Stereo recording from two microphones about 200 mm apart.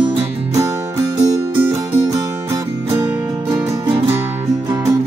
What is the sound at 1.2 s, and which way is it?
Music, 15° right (ahead or behind).